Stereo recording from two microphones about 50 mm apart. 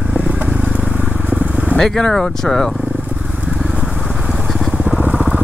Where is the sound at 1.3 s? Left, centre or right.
Right.